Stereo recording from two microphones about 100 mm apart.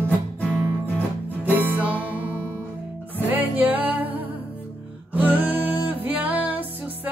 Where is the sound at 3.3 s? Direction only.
15° right (ahead or behind).